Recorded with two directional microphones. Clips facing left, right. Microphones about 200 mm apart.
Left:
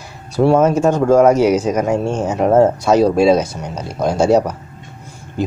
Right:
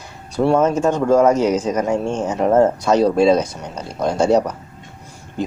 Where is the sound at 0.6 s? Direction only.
10° left (ahead or behind).